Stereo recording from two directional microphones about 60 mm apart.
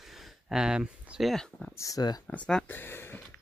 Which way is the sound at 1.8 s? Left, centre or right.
Left.